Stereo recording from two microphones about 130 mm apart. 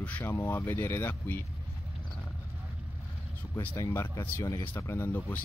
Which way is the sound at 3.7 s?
20° left (ahead or behind).